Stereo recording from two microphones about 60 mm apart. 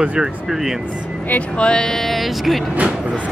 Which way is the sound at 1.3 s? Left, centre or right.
Left.